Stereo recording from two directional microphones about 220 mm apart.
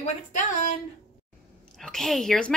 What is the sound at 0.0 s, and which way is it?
Speech, 35° left (ahead or behind).